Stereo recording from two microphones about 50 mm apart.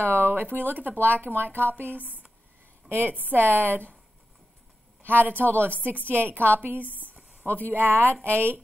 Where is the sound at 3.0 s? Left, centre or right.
Right.